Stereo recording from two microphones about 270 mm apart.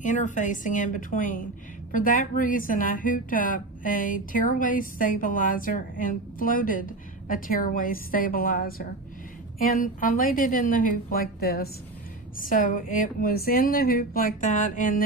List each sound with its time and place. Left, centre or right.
0.0 s a woman's voice: left